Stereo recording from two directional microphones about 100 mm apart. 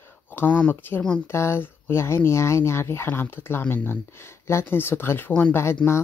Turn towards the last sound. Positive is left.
turn(degrees=15)  # may be behind; listen again after turning